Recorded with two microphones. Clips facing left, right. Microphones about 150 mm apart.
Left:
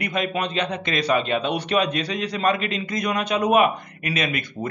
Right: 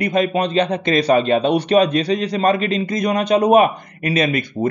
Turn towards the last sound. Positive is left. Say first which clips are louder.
# right 7 dB
turn(degrees=-35)  # may be behind; listen again after turning